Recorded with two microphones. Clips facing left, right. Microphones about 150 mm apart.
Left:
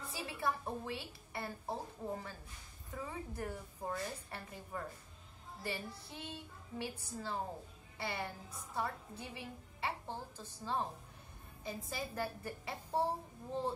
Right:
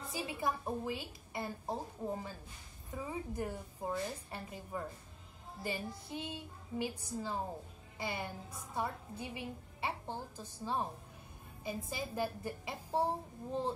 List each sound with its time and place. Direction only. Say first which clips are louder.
0.1 s a woman's voice: right 2 dB; 15° right (ahead or behind)